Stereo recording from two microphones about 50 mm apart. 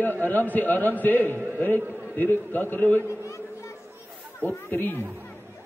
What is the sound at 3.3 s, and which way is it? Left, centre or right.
Music, left.